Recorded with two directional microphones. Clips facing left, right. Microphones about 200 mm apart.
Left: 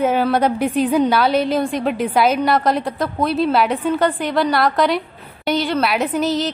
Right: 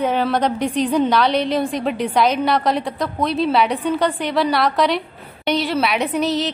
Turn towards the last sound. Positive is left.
turn(degrees=0)  # may be behind; listen again after turning